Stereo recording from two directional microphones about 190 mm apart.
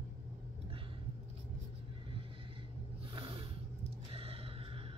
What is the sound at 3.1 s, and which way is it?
Snort, 30° right (ahead or behind).